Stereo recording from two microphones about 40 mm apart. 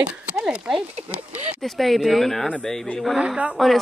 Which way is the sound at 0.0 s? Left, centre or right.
Right.